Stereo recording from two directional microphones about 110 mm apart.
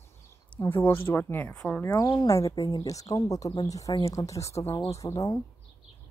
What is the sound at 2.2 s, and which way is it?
Speech, 30° left (ahead or behind).